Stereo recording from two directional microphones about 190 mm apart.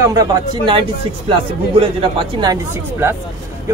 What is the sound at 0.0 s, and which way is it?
Speech, 20° right (ahead or behind).